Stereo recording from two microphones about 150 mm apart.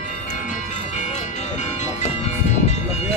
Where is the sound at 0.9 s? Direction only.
50° left (ahead or behind).